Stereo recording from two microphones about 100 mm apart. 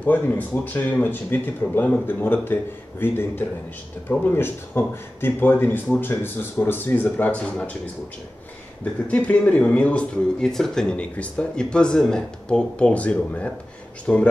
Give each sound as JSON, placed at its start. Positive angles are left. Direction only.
{"t": 0.0, "sound": "speech", "side_deg": 15}
{"t": 9.0, "sound": "speech", "side_deg": 15}